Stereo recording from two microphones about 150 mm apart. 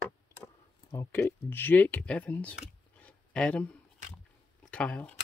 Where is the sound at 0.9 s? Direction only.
15° left (ahead or behind).